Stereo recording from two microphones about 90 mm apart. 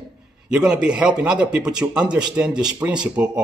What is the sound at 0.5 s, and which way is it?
A man's voice, 10° right (ahead or behind).